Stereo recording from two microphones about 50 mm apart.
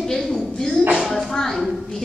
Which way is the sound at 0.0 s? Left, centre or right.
Centre.